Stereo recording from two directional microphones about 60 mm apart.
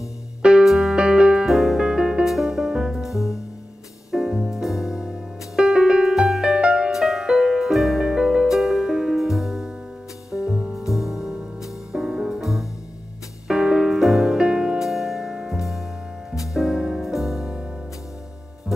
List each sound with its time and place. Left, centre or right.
0.4 s music: centre
1.5 s music: centre
8.1 s music: centre